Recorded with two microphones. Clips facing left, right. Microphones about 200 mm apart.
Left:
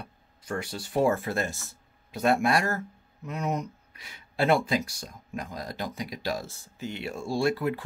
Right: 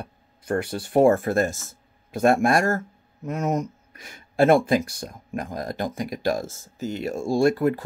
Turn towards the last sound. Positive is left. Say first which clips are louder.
# right 6 dB
turn(degrees=-45)  # may be behind; listen again after turning